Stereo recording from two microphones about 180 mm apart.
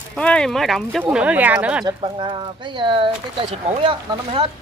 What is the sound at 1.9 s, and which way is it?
Speech, 25° right (ahead or behind).